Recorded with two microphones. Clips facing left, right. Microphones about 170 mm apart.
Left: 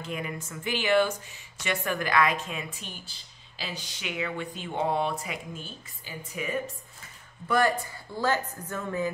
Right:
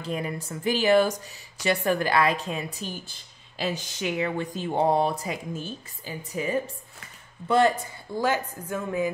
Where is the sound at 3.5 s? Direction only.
45° right (ahead or behind).